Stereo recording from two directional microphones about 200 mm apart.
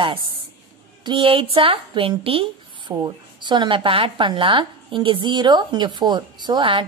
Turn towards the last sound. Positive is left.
turn(degrees=-25)  # may be behind; listen again after turning